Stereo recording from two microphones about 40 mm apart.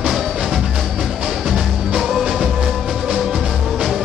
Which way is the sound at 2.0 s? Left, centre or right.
Centre.